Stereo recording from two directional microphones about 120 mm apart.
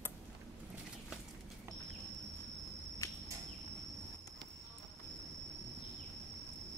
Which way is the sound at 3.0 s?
25° left (ahead or behind).